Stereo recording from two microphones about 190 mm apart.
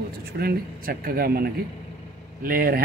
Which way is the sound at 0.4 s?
50° right (ahead or behind).